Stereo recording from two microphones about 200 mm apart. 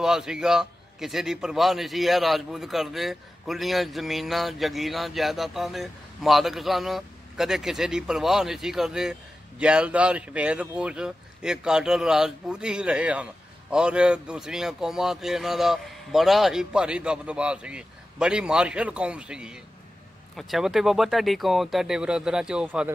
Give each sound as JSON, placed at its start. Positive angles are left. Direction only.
{"t": 0.0, "sound": "speech", "side_deg": -5}